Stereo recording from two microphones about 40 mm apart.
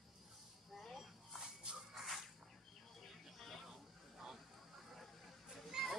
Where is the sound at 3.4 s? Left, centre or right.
Centre.